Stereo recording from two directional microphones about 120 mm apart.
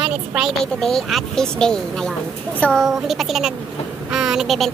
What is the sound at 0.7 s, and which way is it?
Speech, 5° left (ahead or behind).